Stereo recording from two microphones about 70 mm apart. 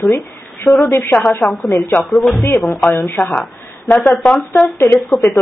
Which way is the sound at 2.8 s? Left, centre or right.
Centre.